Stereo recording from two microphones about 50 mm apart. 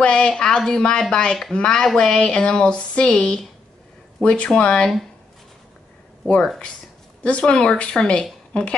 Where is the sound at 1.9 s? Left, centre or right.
Centre.